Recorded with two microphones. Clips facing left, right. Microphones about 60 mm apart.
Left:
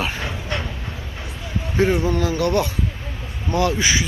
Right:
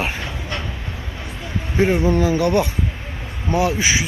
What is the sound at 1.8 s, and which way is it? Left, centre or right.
Speech, right.